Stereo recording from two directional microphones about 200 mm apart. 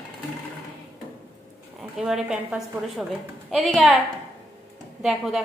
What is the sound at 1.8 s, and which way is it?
A woman's voice, 5° right (ahead or behind).